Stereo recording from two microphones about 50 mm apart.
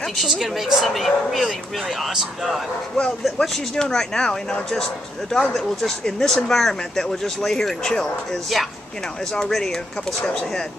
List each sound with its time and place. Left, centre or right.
0.0 s a woman's voice: centre
0.3 s speech: centre
3.3 s speech: centre